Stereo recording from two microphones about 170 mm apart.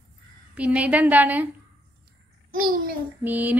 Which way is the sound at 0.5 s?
10° right (ahead or behind).